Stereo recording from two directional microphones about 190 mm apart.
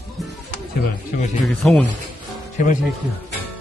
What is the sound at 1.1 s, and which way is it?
Speech, 45° left (ahead or behind).